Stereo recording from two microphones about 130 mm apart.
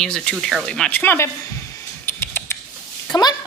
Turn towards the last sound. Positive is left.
turn(degrees=35)  # may be behind; listen again after turning